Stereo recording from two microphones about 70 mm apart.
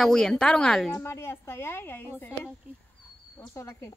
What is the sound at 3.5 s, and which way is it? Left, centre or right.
Speech, left.